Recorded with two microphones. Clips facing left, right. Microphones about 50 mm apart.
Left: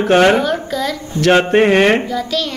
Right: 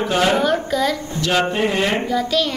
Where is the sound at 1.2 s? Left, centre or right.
Left.